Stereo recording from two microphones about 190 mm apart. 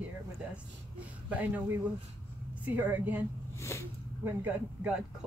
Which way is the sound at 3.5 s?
15° left (ahead or behind).